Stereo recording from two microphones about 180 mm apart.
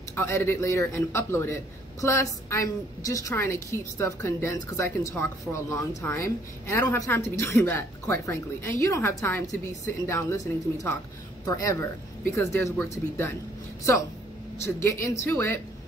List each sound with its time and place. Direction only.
0.1 s a man's voice: 10° left (ahead or behind)
14.6 s a man's voice: 15° left (ahead or behind)